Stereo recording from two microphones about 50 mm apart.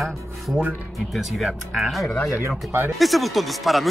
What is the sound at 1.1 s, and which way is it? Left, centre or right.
Speech, centre.